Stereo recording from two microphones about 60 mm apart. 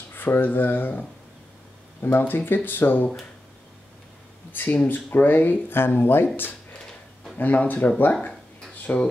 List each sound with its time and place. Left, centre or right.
0.1 s speech: left
4.5 s speech: left